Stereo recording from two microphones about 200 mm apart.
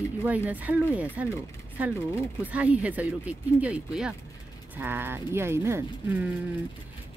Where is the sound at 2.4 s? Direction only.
5° right (ahead or behind).